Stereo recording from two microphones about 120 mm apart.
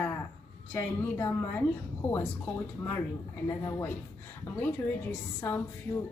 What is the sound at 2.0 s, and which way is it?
A woman's voice, 20° left (ahead or behind).